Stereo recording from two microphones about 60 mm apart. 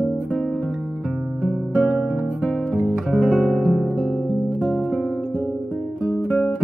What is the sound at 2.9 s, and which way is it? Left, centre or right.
Guitar, centre.